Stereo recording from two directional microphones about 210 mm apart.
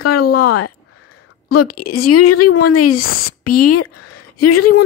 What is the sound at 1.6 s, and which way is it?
Speech, 90° left.